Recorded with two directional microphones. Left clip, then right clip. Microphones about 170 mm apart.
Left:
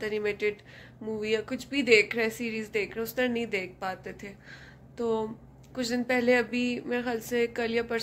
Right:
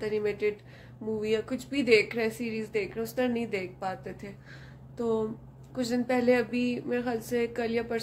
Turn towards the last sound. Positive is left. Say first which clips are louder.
# left 1 dB
turn(degrees=-10)  # may be behind; listen again after turning